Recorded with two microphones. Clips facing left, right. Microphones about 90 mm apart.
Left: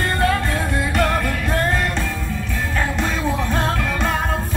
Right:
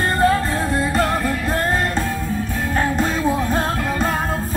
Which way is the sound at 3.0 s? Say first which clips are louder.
Right 3 dB; 40° right (ahead or behind).